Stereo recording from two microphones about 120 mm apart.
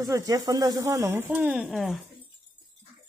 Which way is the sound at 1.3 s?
10° right (ahead or behind).